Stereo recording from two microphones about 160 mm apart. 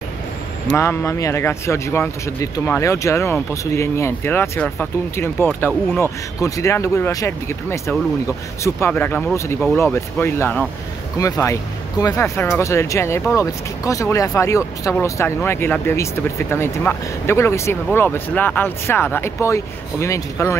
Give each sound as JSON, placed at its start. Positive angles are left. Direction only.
{"t": 0.7, "sound": "speech", "side_deg": 15}